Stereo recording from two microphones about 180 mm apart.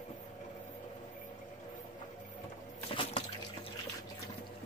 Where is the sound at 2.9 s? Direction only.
30° left (ahead or behind).